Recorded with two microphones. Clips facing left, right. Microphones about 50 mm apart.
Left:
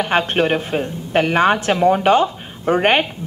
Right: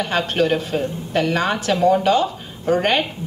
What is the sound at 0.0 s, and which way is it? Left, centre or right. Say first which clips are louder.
A woman's voice: left 2 dB; left.